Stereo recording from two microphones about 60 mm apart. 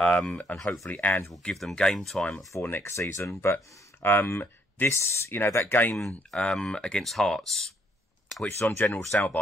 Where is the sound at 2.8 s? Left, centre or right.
Left.